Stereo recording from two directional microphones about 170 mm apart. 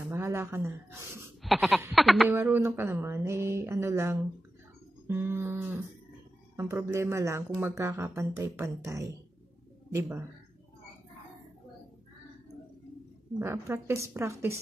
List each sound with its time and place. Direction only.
0.0 s speech: 15° right (ahead or behind)
1.4 s a sound: centre (ahead or behind)
1.8 s speech: 5° right (ahead or behind)
2.2 s speech: 10° right (ahead or behind)
13.4 s speech: 15° right (ahead or behind)